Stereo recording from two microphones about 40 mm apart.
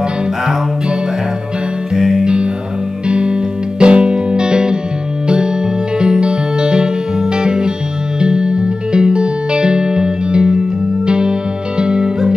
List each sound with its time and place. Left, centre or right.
2.0 s music: centre
3.1 s music: right
5.9 s music: right